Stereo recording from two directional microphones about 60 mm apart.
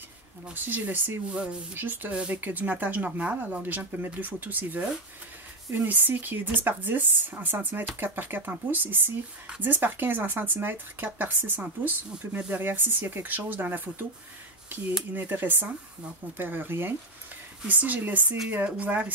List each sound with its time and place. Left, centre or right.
0.5 s speech: right
15.1 s speech: right
17.6 s speech: right